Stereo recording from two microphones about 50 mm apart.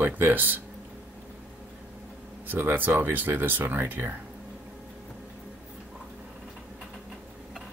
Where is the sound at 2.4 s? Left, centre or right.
Right.